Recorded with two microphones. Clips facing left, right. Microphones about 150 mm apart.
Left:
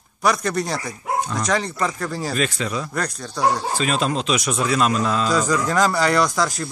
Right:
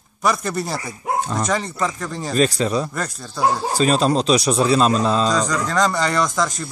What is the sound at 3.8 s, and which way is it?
A man's voice, 35° right (ahead or behind).